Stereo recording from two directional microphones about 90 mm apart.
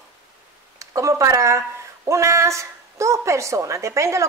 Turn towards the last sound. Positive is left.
turn(degrees=-35)  # may be behind; listen again after turning